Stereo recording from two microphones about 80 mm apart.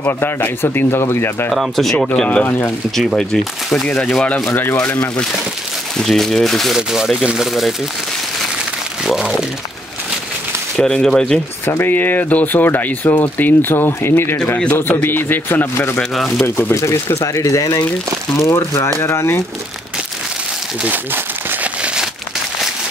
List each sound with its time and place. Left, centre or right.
0.0 s speech: left
1.5 s speech: centre
2.2 s speech: left
3.0 s speech: centre
4.5 s speech: left
5.9 s speech: centre
9.0 s speech: centre
10.8 s speech: centre
11.8 s speech: left
16.0 s speech: centre
16.4 s speech: left
20.8 s crumpling: right